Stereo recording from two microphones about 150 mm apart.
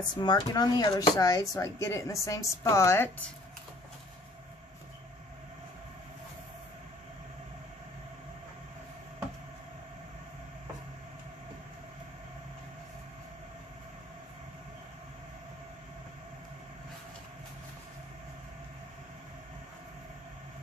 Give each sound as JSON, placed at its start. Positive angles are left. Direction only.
{"t": 0.2, "sound": "speech", "side_deg": 30}